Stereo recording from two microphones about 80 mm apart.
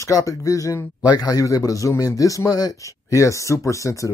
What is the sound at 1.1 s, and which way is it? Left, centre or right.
A man's voice, left.